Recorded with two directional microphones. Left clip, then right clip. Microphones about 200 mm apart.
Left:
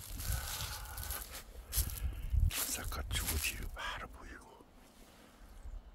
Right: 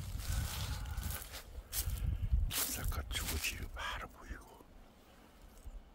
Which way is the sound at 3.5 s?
5° left (ahead or behind).